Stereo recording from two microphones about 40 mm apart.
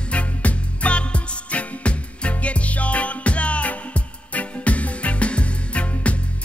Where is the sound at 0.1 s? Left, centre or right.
Left.